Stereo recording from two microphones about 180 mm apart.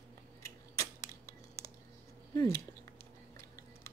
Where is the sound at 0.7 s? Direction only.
15° left (ahead or behind).